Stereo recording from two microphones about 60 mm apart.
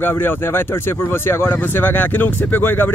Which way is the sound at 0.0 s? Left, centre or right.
Left.